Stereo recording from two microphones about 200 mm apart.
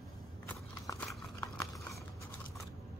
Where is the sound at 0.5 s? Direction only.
10° left (ahead or behind).